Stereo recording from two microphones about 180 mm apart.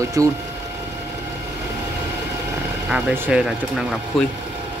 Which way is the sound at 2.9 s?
5° right (ahead or behind).